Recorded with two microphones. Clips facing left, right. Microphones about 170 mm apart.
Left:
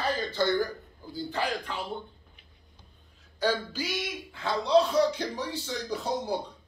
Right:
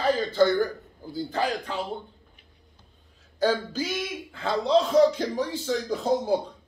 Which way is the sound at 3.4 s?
45° right (ahead or behind).